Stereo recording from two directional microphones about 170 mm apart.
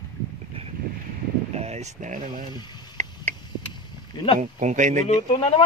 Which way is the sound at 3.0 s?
45° right (ahead or behind).